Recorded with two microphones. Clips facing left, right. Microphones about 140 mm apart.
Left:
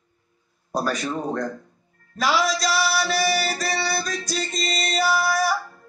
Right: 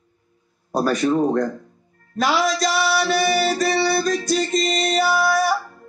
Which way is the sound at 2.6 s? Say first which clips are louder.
Right 2 dB; 50° right (ahead or behind).